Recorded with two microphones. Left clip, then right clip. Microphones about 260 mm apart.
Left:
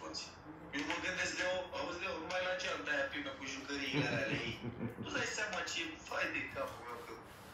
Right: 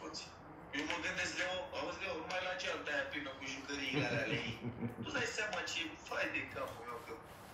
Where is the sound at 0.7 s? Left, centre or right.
Centre.